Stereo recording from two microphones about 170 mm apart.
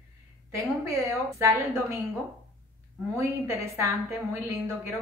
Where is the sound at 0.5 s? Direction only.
15° right (ahead or behind).